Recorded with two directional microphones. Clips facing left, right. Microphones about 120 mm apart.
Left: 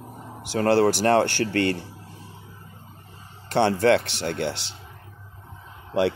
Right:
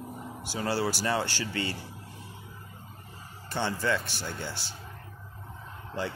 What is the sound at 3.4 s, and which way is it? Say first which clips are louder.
Speech: left 11 dB; 70° left (ahead or behind).